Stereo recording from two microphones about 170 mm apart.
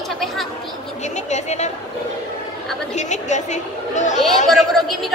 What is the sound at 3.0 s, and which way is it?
A woman's voice, 45° left (ahead or behind).